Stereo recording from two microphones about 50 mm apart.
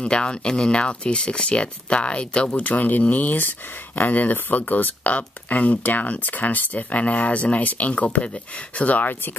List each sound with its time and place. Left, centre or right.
0.0 s speech: centre
2.6 s speech: left